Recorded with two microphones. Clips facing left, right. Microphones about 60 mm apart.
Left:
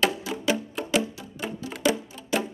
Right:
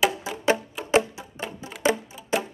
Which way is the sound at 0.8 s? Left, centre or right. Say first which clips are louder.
Right 6 dB; right.